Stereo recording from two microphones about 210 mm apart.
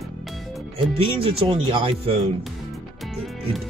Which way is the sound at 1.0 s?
25° right (ahead or behind).